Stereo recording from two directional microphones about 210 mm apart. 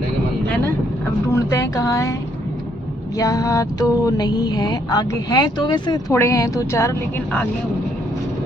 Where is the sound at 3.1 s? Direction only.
15° left (ahead or behind).